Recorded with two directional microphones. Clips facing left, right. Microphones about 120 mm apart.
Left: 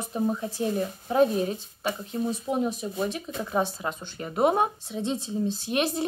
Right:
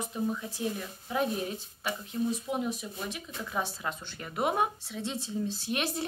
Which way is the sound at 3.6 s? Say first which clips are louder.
Left 6 dB; 20° left (ahead or behind).